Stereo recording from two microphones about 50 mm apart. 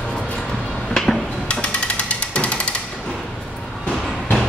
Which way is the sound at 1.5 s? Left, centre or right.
Left.